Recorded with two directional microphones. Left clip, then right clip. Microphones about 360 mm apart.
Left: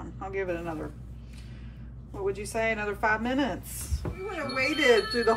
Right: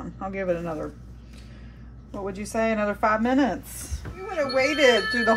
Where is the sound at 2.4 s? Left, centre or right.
Right.